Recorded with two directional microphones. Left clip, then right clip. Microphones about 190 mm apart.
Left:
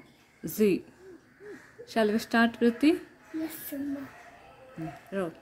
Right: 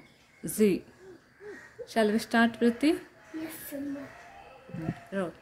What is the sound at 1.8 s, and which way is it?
Speech, 5° left (ahead or behind).